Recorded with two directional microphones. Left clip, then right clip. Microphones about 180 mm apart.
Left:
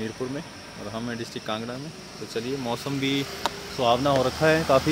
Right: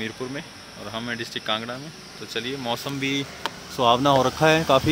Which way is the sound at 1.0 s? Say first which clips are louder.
Right 4 dB; 5° left (ahead or behind).